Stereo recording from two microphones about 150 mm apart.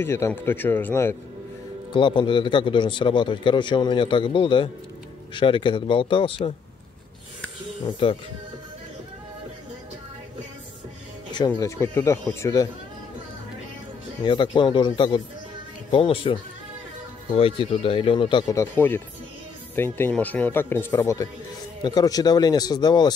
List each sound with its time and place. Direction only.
0.0 s speech: 15° left (ahead or behind)
1.9 s a man's voice: 30° left (ahead or behind)
8.0 s a man's voice: 40° left (ahead or behind)
11.3 s speech: 25° left (ahead or behind)
14.2 s a man's voice: 30° left (ahead or behind)
17.4 s a man's voice: 40° left (ahead or behind)
18.6 s speech: 15° left (ahead or behind)